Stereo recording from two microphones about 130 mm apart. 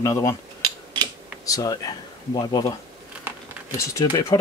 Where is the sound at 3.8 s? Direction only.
25° left (ahead or behind).